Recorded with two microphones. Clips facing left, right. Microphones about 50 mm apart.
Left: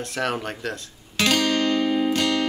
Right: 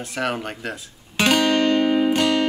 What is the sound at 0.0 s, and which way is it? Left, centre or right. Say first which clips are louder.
Speech: right 1 dB; centre.